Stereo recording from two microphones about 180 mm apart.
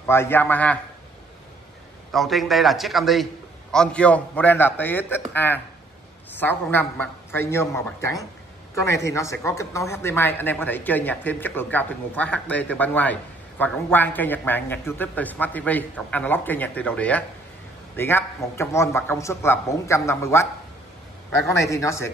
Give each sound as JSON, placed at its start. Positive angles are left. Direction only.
{"t": 0.0, "sound": "speech", "side_deg": 10}
{"t": 2.1, "sound": "a man's voice", "side_deg": 0}
{"t": 21.5, "sound": "speech", "side_deg": 15}